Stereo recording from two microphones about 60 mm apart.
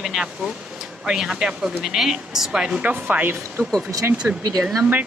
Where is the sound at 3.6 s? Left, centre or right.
Right.